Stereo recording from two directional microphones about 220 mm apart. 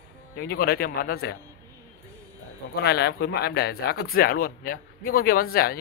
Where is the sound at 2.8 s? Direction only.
50° left (ahead or behind).